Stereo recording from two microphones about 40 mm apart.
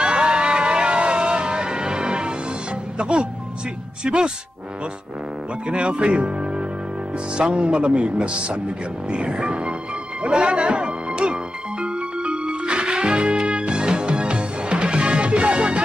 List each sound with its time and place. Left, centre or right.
0.0 s vehicle: right
4.0 s speech: right
5.7 s speech: right
9.1 s music: right